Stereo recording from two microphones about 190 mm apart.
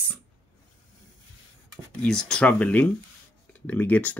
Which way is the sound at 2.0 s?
5° left (ahead or behind).